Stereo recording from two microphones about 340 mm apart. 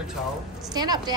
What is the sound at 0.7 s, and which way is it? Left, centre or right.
Speech, centre.